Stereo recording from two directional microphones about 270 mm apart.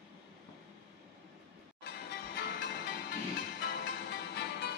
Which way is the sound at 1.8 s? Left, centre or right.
Left.